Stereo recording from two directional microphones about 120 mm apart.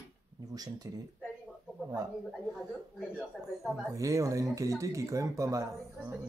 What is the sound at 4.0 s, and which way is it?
Speech, 25° right (ahead or behind).